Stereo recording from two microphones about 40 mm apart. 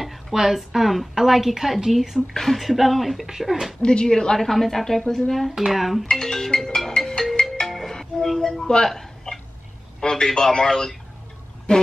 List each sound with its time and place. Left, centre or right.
0.0 s a woman's voice: centre
3.3 s speech: centre
3.8 s a man's voice: centre
4.4 s a woman's voice: centre
5.6 s a woman's voice: centre
6.0 s speech: centre
7.0 s music: centre
9.9 s telephone: centre
10.3 s a man's voice: centre
11.7 s speech: left